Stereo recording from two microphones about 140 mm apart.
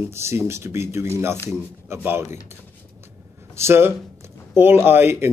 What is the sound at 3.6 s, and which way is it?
A man's voice, 15° right (ahead or behind).